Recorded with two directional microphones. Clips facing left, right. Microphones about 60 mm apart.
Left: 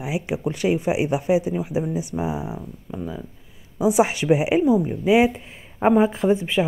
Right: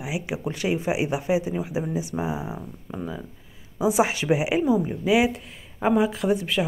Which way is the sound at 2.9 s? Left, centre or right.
Centre.